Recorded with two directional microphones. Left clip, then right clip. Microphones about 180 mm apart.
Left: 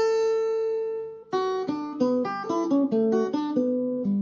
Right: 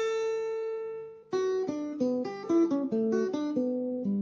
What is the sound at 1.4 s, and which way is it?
Music, 35° right (ahead or behind).